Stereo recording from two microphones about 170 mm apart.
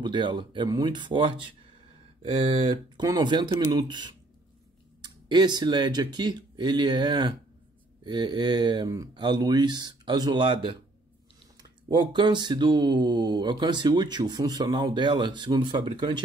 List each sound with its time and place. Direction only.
0.0 s speech: 25° right (ahead or behind)
3.0 s speech: 25° right (ahead or behind)
12.1 s speech: 25° right (ahead or behind)